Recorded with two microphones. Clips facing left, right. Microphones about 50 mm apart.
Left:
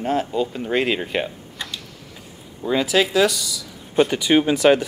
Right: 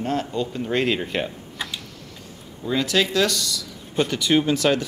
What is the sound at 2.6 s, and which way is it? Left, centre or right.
Speech, centre.